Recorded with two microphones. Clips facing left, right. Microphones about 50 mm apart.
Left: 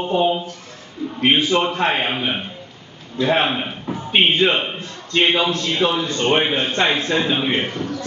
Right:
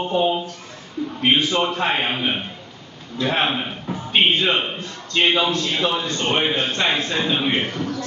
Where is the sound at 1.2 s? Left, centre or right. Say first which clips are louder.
Left 2 dB; centre.